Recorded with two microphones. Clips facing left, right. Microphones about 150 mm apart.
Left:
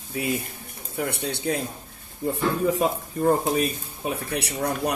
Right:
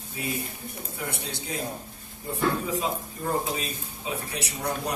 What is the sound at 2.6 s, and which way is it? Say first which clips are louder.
Speech: left 6 dB; 60° left (ahead or behind).